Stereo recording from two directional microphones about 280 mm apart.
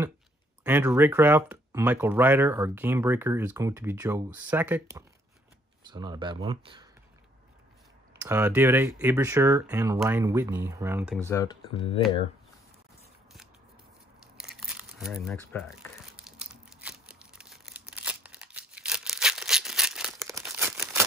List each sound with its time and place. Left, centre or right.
0.7 s speech: centre
8.2 s speech: centre
11.2 s speech: centre
14.6 s crumpling: centre
16.2 s a sound: centre